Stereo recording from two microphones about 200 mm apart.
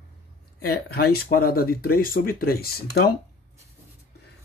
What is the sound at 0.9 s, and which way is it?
Speech, 50° left (ahead or behind).